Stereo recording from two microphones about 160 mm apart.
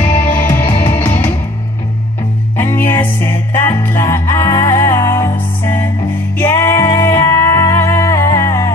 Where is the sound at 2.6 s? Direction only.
15° left (ahead or behind).